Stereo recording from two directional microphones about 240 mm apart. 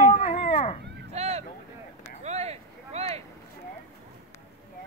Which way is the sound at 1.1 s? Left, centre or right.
Right.